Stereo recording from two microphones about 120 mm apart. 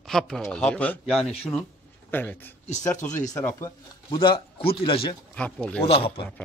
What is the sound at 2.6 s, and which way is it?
Speech, 75° left (ahead or behind).